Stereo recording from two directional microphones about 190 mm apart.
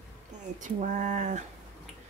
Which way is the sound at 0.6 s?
40° right (ahead or behind).